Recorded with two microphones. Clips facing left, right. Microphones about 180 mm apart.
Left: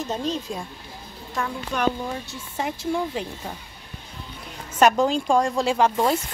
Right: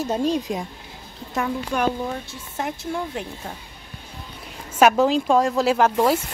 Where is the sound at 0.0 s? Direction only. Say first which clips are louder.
Right 5 dB; 10° right (ahead or behind).